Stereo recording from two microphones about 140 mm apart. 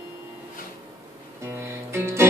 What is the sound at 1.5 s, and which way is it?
Music, 20° right (ahead or behind).